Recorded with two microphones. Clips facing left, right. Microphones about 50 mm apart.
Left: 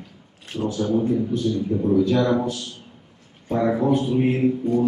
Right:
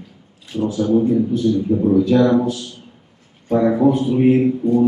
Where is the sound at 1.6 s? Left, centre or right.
Centre.